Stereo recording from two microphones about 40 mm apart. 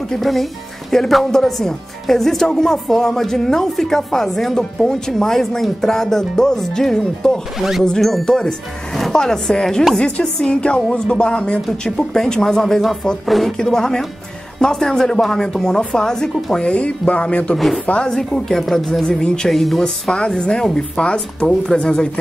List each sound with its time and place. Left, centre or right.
0.2 s speech: centre
7.5 s speech: centre
8.3 s a woman's voice: centre
11.8 s speech: centre
13.3 s speech: centre
13.6 s speech: centre
16.6 s speech: left
18.0 s speech: centre
19.5 s speech: centre
19.8 s a woman's voice: centre